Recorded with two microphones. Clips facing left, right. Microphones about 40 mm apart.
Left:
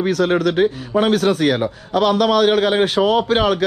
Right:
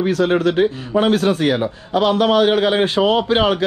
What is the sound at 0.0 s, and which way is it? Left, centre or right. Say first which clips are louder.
A man's voice: right 1 dB; left.